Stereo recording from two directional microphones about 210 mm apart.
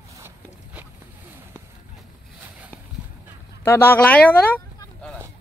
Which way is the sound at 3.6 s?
10° left (ahead or behind).